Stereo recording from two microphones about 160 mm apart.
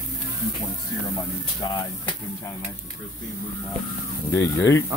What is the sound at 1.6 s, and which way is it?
Speech, 25° left (ahead or behind).